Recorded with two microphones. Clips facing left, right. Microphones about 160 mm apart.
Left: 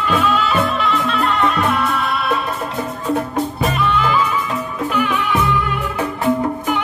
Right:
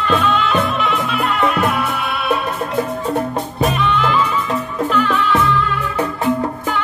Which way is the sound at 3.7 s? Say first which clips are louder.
Even; 5° left (ahead or behind).